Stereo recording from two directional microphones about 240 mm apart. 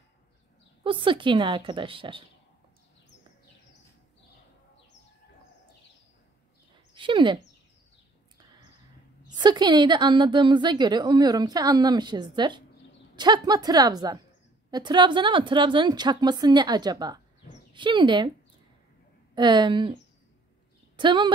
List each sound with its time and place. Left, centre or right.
0.8 s a woman's voice: right
6.9 s a sound: right
9.3 s a woman's voice: centre
19.3 s a woman's voice: centre
21.0 s a woman's voice: centre